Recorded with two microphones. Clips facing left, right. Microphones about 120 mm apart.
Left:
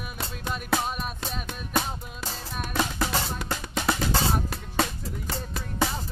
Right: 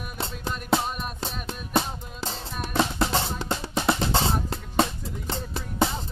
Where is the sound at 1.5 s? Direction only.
25° right (ahead or behind).